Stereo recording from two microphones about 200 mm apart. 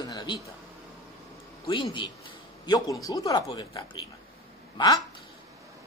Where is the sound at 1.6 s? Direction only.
25° left (ahead or behind).